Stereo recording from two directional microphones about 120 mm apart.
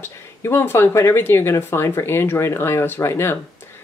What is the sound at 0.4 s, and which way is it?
Speech, 20° left (ahead or behind).